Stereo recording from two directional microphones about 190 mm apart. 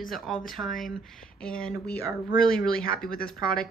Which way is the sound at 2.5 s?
50° left (ahead or behind).